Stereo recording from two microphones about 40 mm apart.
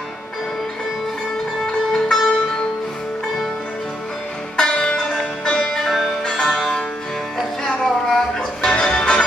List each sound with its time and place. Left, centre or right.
1.9 s music: centre
4.6 s music: centre
5.7 s music: centre
7.6 s a sound: centre
8.4 s music: centre